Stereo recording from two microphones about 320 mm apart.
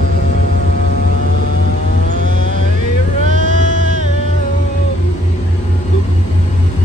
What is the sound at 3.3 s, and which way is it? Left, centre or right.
Sheep, right.